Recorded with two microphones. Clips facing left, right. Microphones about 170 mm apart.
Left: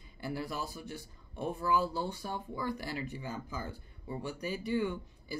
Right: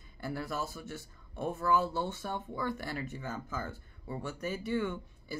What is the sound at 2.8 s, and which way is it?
Speech, 50° right (ahead or behind).